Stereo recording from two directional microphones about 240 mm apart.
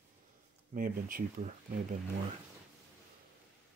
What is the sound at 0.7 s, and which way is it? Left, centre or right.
Speech, right.